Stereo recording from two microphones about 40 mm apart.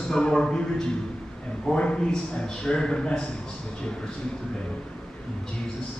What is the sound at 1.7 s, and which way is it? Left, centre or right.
A man's voice, left.